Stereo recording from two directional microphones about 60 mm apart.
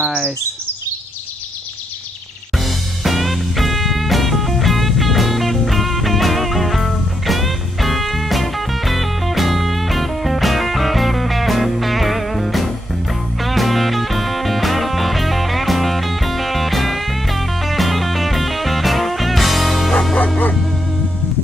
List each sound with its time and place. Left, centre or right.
0.0 s speech: right
2.5 s music: centre
19.9 s bow-wow: centre